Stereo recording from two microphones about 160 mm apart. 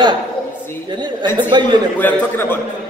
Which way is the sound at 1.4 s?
30° right (ahead or behind).